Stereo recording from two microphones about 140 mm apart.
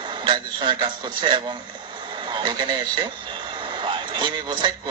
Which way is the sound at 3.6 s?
35° right (ahead or behind).